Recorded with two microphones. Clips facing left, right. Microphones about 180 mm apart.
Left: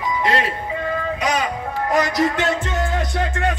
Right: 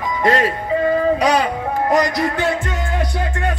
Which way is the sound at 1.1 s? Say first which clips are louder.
Right 6 dB; 35° right (ahead or behind).